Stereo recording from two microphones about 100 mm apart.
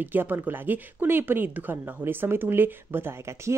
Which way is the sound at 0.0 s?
20° right (ahead or behind).